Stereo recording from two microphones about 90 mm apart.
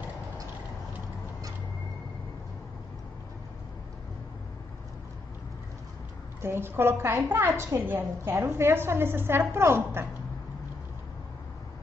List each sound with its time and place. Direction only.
6.4 s a woman's voice: 25° right (ahead or behind)